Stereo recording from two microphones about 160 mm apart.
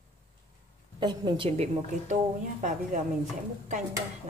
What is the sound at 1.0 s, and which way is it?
Speech, 25° right (ahead or behind).